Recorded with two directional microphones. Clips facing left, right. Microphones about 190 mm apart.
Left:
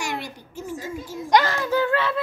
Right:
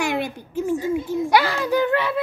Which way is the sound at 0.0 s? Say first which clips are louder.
Right 7 dB; 55° right (ahead or behind).